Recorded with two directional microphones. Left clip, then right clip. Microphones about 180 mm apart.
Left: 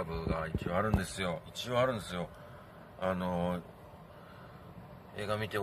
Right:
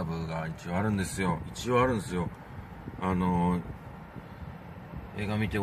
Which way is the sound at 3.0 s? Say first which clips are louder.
Right 4 dB; 15° left (ahead or behind).